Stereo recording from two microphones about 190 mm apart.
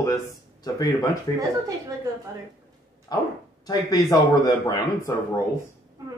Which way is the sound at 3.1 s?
20° left (ahead or behind).